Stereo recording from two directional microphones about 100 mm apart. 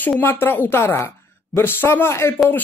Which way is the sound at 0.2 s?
20° left (ahead or behind).